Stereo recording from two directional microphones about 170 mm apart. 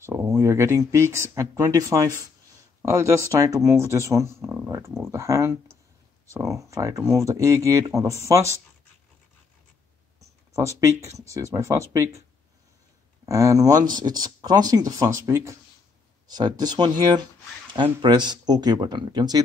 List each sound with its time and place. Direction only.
0.0 s speech: 15° right (ahead or behind)
10.5 s speech: 20° right (ahead or behind)
13.2 s speech: 20° right (ahead or behind)